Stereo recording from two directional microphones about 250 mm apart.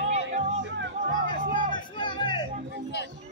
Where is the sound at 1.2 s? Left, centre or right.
Centre.